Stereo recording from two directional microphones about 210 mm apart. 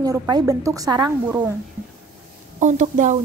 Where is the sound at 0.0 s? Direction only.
15° right (ahead or behind).